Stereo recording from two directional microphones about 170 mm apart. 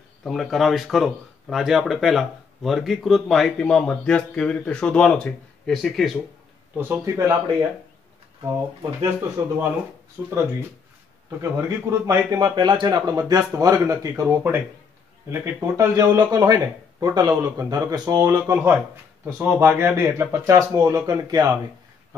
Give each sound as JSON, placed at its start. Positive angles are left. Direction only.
{"t": 0.2, "sound": "speech", "side_deg": 0}
{"t": 6.8, "sound": "speech", "side_deg": -15}
{"t": 9.4, "sound": "speech", "side_deg": -20}
{"t": 10.2, "sound": "speech", "side_deg": -10}
{"t": 14.2, "sound": "speech", "side_deg": -10}
{"t": 18.4, "sound": "speech", "side_deg": -10}